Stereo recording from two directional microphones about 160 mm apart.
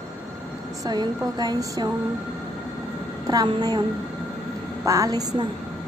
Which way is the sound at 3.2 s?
25° right (ahead or behind).